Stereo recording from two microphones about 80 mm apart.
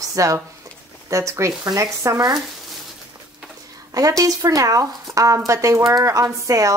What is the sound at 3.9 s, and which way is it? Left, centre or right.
A woman's voice, right.